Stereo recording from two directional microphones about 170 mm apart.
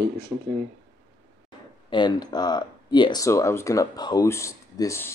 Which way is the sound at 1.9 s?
25° left (ahead or behind).